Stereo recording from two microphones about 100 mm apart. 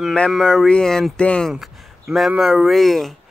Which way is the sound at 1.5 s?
5° right (ahead or behind).